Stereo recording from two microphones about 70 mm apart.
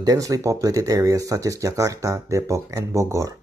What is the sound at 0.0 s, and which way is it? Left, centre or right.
Speech, right.